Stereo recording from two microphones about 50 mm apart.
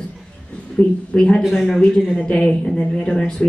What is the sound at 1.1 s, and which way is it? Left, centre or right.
Speech, centre.